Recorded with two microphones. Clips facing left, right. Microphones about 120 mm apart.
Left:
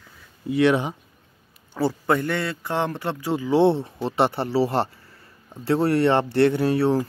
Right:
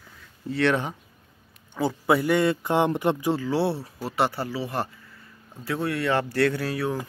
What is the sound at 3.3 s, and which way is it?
Speech, 20° left (ahead or behind).